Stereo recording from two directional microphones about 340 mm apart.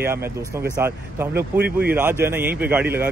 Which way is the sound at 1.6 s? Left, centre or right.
Right.